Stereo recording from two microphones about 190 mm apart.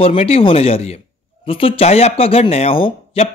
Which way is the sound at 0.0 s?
30° left (ahead or behind).